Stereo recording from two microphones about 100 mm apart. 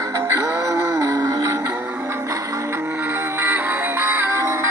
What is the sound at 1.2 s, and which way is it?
Music, 40° right (ahead or behind).